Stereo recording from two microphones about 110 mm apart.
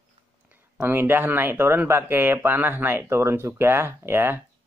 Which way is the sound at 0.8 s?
20° right (ahead or behind).